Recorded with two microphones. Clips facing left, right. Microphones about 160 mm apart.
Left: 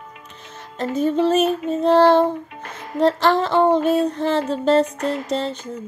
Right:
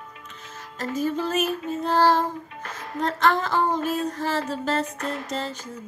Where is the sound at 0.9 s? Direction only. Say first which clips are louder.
Left 7 dB; 25° left (ahead or behind).